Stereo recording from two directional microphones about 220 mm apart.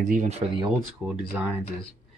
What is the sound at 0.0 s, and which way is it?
Speech, 35° right (ahead or behind).